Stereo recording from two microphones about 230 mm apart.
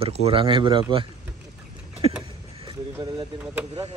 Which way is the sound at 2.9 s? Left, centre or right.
Centre.